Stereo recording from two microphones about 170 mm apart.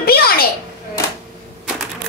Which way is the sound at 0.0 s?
65° left (ahead or behind).